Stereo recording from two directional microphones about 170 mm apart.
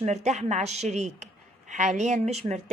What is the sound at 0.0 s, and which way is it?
A woman's voice, 40° right (ahead or behind).